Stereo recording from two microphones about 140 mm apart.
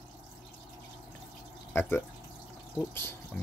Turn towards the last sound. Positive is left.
turn(degrees=15)  # may be behind; listen again after turning